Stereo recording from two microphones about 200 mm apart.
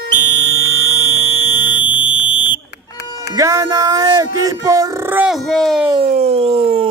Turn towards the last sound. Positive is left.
turn(degrees=-30)  # may be behind; listen again after turning